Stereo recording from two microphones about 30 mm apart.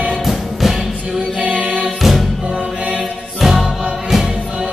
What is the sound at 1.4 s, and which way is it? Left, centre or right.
Music, right.